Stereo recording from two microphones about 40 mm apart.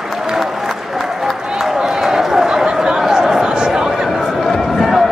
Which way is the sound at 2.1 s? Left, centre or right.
Centre.